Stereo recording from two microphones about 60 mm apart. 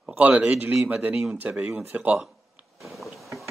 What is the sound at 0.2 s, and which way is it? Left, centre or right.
Speech, right.